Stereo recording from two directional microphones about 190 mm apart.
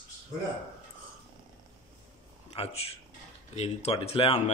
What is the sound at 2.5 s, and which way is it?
Speech, 30° left (ahead or behind).